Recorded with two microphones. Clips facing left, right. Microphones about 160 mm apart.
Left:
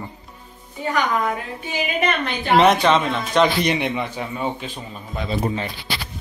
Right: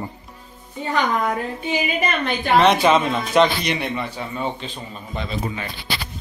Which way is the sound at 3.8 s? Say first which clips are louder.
Left 2 dB; 15° left (ahead or behind).